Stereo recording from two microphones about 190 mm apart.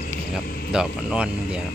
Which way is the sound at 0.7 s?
5° right (ahead or behind).